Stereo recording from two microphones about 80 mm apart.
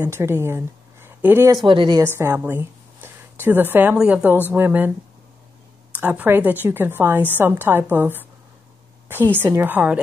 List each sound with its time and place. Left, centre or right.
0.0 s a woman's voice: right
1.7 s a woman's voice: right
2.0 s a woman's voice: right
3.9 s a woman's voice: centre
5.9 s a woman's voice: right
9.3 s a woman's voice: right